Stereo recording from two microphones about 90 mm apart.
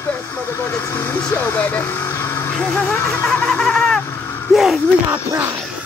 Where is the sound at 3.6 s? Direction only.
5° left (ahead or behind).